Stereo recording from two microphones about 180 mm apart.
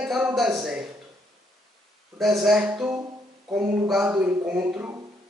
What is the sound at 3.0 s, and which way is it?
Music, 15° right (ahead or behind).